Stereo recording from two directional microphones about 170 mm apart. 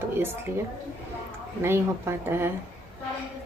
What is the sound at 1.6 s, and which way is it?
Speech, 15° right (ahead or behind).